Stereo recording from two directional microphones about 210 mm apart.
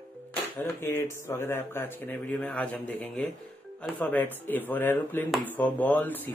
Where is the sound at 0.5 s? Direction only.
10° left (ahead or behind).